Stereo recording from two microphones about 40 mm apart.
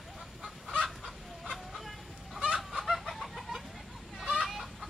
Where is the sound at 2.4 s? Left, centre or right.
Right.